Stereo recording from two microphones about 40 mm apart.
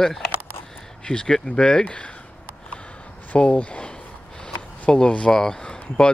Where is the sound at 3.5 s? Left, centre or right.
Left.